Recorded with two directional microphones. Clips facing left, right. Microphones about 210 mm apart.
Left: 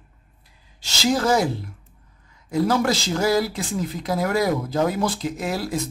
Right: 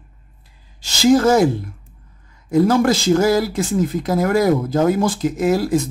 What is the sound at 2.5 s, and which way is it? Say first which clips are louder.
Speech: right 6 dB; 50° right (ahead or behind).